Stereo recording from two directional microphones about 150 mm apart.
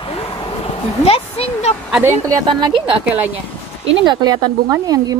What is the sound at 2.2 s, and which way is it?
A woman's voice, 25° right (ahead or behind).